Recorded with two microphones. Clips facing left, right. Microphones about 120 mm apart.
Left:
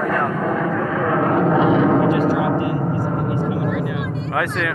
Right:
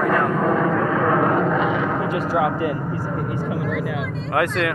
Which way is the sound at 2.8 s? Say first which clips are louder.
Left 4 dB; 20° left (ahead or behind).